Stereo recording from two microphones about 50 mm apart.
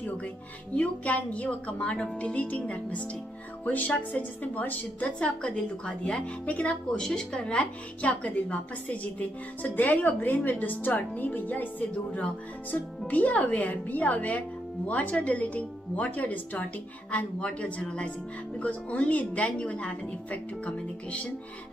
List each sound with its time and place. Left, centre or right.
0.7 s a woman's voice: left